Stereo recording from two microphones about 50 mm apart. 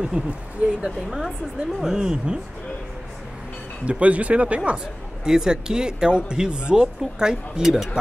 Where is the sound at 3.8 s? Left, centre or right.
Right; by 8.0 s centre.